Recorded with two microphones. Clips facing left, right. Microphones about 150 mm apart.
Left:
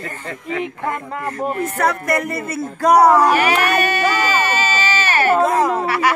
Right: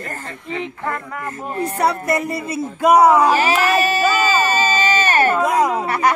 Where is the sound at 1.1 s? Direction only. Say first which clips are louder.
Left 5 dB; 35° left (ahead or behind).